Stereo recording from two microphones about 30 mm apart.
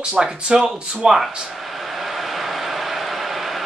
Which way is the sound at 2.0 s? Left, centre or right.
Centre.